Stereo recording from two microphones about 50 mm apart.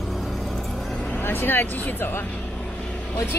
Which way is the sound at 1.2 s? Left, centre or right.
Left.